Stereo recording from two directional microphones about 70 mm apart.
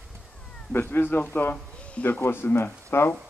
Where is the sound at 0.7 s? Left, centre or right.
Left.